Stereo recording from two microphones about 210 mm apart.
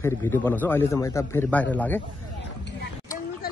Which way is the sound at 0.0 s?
10° left (ahead or behind).